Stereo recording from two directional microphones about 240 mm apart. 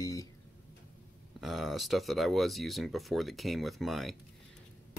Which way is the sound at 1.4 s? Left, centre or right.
Centre.